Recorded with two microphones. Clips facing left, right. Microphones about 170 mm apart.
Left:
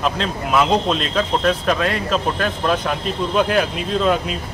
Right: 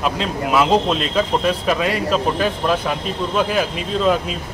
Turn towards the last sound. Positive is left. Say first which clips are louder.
# even
turn(degrees=0)  # may be behind; listen again after turning